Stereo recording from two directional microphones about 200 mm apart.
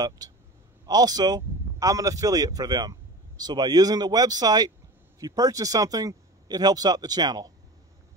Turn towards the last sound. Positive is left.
turn(degrees=-20)  # may be behind; listen again after turning